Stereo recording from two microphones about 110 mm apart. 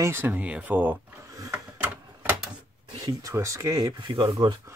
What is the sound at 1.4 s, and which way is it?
Printer, 15° right (ahead or behind).